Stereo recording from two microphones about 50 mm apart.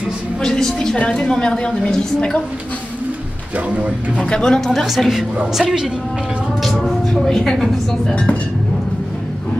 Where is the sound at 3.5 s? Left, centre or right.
Right.